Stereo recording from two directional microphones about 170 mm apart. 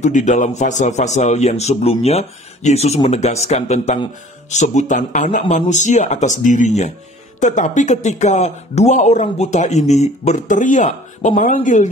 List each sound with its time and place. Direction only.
0.0 s a man's voice: 45° left (ahead or behind)